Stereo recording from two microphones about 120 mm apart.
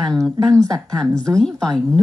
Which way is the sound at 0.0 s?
5° left (ahead or behind).